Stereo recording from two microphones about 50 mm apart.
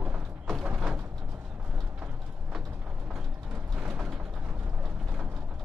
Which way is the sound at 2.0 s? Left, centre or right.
Right.